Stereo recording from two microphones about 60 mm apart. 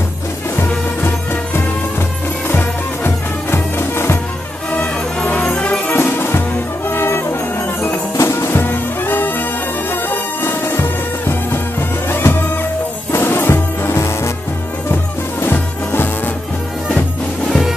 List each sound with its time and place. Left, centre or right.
1.0 s music: left
4.7 s music: left
5.9 s music: left
15.4 s music: left
17.5 s music: centre